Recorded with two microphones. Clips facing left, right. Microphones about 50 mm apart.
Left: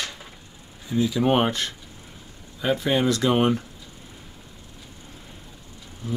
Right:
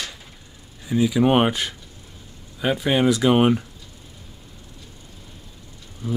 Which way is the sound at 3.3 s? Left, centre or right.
Centre.